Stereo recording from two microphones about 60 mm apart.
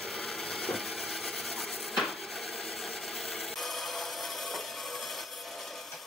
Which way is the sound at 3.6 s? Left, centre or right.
Centre.